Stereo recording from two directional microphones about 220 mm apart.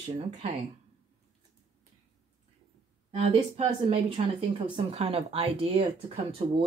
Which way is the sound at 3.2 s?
25° right (ahead or behind).